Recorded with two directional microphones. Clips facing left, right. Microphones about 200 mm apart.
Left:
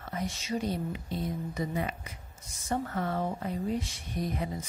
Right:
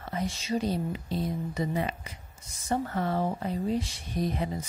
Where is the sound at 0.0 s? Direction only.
30° right (ahead or behind).